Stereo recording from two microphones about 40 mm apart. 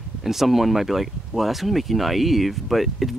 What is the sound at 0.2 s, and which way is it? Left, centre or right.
Speech, centre.